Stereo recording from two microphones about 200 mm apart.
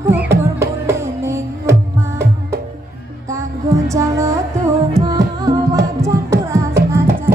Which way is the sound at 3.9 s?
15° right (ahead or behind).